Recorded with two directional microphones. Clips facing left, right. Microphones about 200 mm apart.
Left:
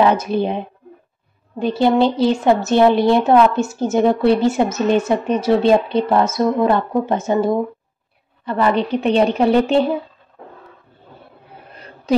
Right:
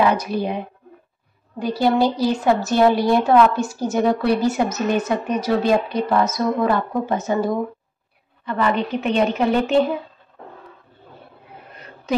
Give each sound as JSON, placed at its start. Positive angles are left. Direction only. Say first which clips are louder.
{"t": 0.0, "sound": "a woman's voice", "louder": "left 3 dB", "side_deg": 25}
{"t": 8.5, "sound": "a woman's voice", "louder": "left 4 dB", "side_deg": 35}